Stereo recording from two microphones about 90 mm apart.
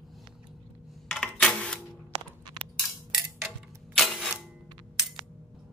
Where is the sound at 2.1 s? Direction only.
75° right (ahead or behind).